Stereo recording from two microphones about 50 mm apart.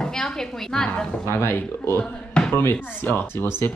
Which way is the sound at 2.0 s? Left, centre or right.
Centre.